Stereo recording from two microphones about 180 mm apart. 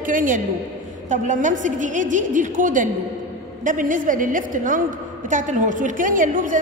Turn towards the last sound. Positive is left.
turn(degrees=-45)  # may be behind; listen again after turning